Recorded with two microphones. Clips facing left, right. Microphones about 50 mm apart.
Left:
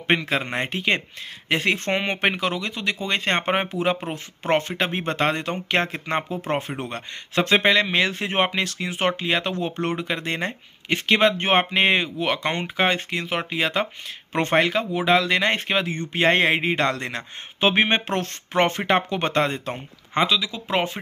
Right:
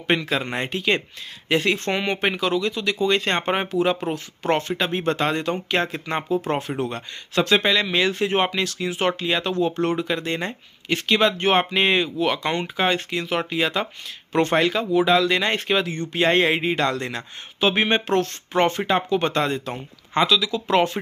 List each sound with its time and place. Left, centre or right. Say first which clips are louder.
0.0 s speech: even; left
20.2 s speech: right 2 dB; centre